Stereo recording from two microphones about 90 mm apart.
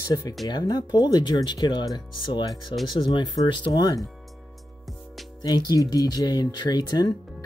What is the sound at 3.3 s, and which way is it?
Speech, 55° left (ahead or behind).